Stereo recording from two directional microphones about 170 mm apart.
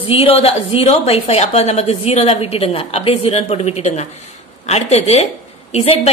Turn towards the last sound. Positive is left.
turn(degrees=35)  # may be behind; listen again after turning